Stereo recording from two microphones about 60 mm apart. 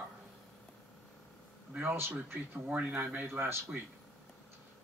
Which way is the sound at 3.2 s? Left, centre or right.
Right.